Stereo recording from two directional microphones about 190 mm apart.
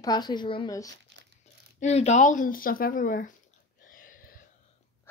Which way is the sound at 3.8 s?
45° left (ahead or behind).